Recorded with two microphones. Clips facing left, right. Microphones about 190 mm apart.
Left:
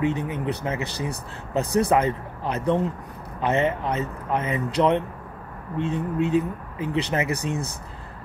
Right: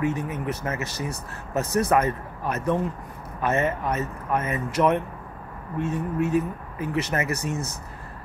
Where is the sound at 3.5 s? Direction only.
20° left (ahead or behind).